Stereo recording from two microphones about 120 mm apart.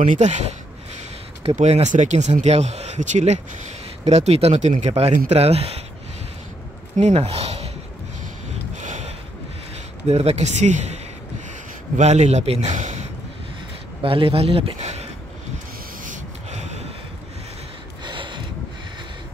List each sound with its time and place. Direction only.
0.0 s speech: 85° right
1.6 s speech: 75° right (ahead or behind)
4.0 s speech: 65° right (ahead or behind)
7.0 s speech: 65° right (ahead or behind)
8.7 s a sound: 85° right
10.0 s speech: 60° right (ahead or behind)
12.0 s speech: 75° right (ahead or behind)
14.0 s speech: 50° right (ahead or behind); by 15.0 s 65° right (ahead or behind)
16.0 s snort: 80° right
18.0 s a sound: 40° right (ahead or behind)